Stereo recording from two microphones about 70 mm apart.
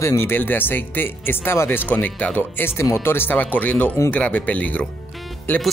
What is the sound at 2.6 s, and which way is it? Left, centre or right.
Speech, left.